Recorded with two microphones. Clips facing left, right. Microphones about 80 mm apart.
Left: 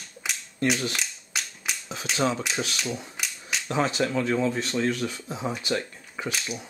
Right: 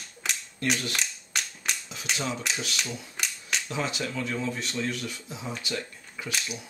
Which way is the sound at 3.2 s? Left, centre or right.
Centre.